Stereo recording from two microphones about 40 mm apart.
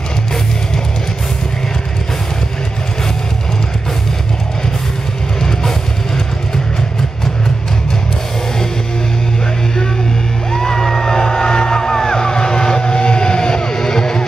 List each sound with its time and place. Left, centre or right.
5.4 s music: centre
10.5 s music: centre